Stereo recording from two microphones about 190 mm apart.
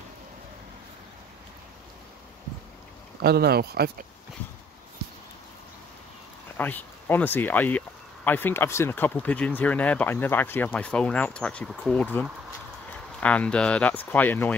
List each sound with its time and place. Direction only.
3.2 s speech: 55° right (ahead or behind)
6.5 s speech: 10° left (ahead or behind)